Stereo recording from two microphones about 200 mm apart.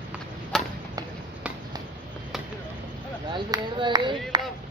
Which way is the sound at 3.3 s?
20° right (ahead or behind).